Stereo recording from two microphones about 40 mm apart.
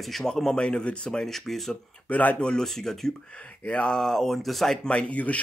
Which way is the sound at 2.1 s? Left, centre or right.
Left.